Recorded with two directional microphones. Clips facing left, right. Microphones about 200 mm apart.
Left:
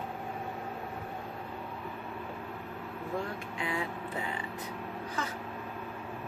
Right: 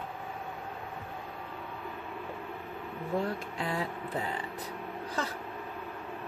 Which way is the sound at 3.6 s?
35° right (ahead or behind).